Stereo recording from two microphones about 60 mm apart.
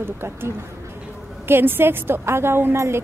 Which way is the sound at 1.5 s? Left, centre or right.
Right.